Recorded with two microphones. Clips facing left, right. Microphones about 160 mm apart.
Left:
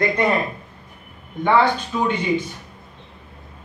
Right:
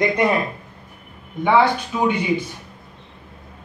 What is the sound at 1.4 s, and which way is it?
Speech, 10° right (ahead or behind).